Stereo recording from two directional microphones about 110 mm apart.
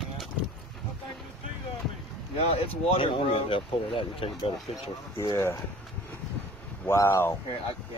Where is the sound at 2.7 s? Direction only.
60° left (ahead or behind).